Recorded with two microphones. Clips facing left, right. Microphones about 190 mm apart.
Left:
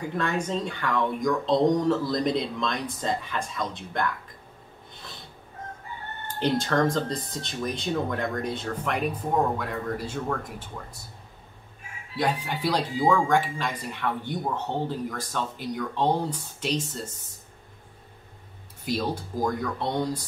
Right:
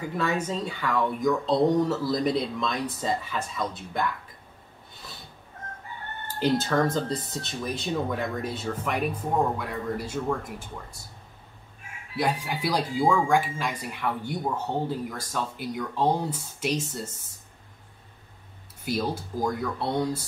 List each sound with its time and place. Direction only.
0.2 s speech: 5° right (ahead or behind)
6.2 s speech: 5° right (ahead or behind)
12.2 s speech: 10° right (ahead or behind)
18.9 s speech: 5° right (ahead or behind)